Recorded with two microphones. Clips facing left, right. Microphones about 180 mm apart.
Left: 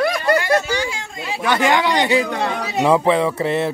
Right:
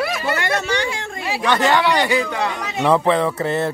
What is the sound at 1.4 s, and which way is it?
Speech, 10° left (ahead or behind).